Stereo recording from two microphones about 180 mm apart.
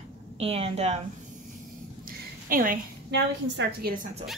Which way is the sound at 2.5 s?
50° right (ahead or behind).